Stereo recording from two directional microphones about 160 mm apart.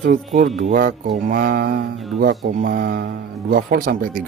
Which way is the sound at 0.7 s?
60° right (ahead or behind).